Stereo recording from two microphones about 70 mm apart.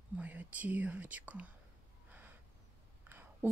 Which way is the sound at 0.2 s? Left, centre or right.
Right.